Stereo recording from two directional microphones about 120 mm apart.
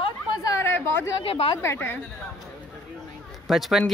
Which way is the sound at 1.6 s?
20° left (ahead or behind).